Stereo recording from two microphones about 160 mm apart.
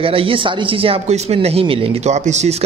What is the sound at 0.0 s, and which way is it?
Speech, 35° right (ahead or behind).